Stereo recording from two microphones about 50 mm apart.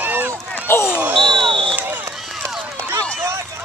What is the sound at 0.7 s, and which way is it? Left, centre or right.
Basketball bounce, left.